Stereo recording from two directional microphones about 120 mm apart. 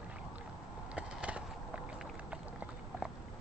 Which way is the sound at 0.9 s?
10° right (ahead or behind).